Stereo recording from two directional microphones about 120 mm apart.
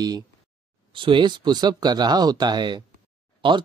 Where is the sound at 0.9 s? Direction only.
45° right (ahead or behind).